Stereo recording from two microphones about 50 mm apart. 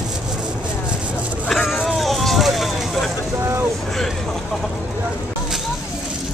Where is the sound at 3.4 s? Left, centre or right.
Right.